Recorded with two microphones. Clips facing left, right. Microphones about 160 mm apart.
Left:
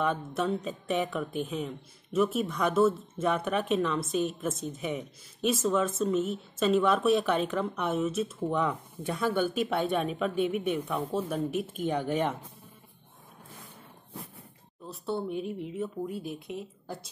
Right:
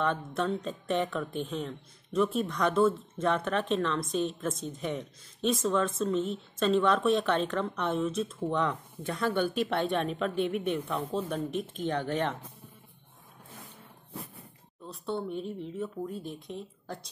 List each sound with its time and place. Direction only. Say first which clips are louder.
0.0 s speech: left 1 dB; 5° left (ahead or behind)
14.9 s speech: left 1 dB; 5° left (ahead or behind)